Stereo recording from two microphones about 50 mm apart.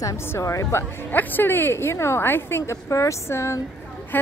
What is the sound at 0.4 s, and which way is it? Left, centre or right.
Speech, left.